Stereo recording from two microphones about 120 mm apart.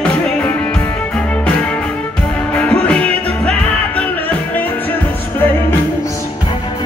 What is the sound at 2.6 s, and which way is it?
Music, 10° left (ahead or behind).